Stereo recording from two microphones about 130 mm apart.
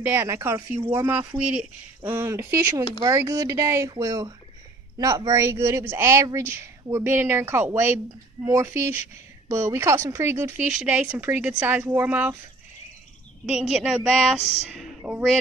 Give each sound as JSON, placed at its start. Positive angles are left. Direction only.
{"t": 0.0, "sound": "speech", "side_deg": -20}
{"t": 2.0, "sound": "speech", "side_deg": -20}
{"t": 13.5, "sound": "a woman's voice", "side_deg": -5}